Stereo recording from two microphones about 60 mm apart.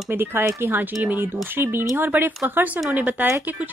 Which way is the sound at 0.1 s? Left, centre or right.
Right.